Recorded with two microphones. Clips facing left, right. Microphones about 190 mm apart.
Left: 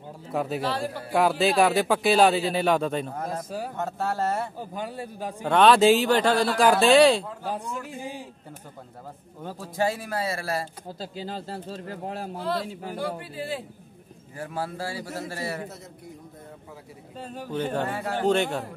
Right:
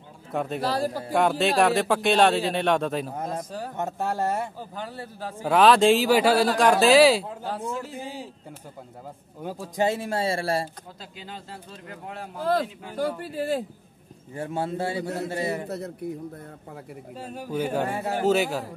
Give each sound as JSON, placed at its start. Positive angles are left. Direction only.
{"t": 0.3, "sound": "speech", "side_deg": 0}
{"t": 0.6, "sound": "a man's voice", "side_deg": -40}
{"t": 1.1, "sound": "speech", "side_deg": 0}
{"t": 3.2, "sound": "speech", "side_deg": -20}
{"t": 3.4, "sound": "a man's voice", "side_deg": 10}
{"t": 3.7, "sound": "a man's voice", "side_deg": -20}
{"t": 4.6, "sound": "a man's voice", "side_deg": 15}
{"t": 5.4, "sound": "speech", "side_deg": -5}
{"t": 9.4, "sound": "speech", "side_deg": -15}
{"t": 10.9, "sound": "speech", "side_deg": 35}
{"t": 12.4, "sound": "speech", "side_deg": -45}
{"t": 14.3, "sound": "speech", "side_deg": -25}
{"t": 17.2, "sound": "a man's voice", "side_deg": -10}